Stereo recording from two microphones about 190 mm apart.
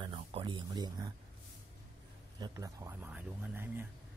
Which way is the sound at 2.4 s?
15° right (ahead or behind).